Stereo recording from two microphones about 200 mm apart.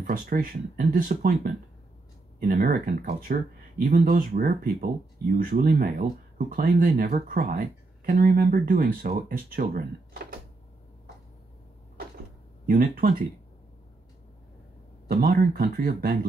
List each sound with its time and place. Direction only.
0.0 s speech: 45° right (ahead or behind)
12.6 s speech: 45° right (ahead or behind)
15.0 s speech: 50° right (ahead or behind)